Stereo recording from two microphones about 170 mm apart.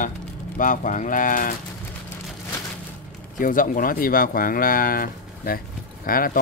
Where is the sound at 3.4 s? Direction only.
55° left (ahead or behind).